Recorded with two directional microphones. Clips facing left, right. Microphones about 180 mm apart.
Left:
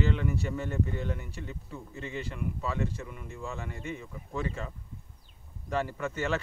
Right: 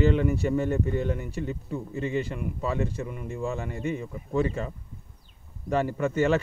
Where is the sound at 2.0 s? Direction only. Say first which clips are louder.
Right 6 dB; 15° right (ahead or behind).